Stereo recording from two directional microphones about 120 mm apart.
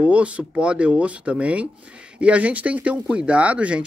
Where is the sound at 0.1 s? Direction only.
10° right (ahead or behind).